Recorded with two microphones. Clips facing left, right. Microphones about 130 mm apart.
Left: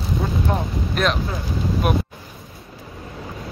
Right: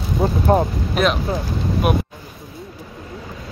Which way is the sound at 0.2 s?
25° right (ahead or behind).